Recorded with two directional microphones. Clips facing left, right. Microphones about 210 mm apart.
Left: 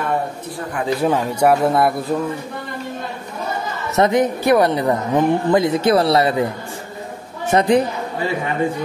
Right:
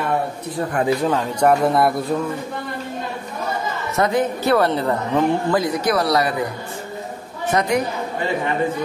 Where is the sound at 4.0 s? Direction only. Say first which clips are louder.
Left 4 dB; 20° left (ahead or behind).